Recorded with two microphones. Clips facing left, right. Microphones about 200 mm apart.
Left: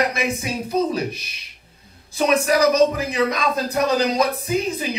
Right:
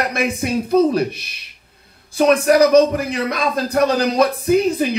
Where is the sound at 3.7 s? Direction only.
60° right (ahead or behind).